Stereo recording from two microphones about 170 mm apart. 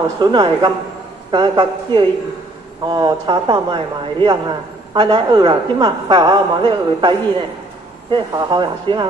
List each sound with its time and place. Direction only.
0.2 s speech: 25° right (ahead or behind)